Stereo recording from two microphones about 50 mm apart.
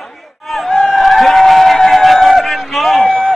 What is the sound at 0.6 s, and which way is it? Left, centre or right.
Chatter, centre.